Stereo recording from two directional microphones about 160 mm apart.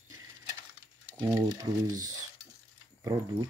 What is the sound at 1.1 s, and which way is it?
Speech, 15° right (ahead or behind).